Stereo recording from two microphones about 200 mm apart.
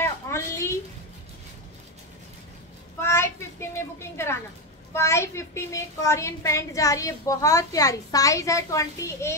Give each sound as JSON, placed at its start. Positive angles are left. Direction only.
{"t": 0.0, "sound": "a sound", "side_deg": 15}
{"t": 3.0, "sound": "child singing", "side_deg": 10}
{"t": 4.9, "sound": "a woman's voice", "side_deg": 15}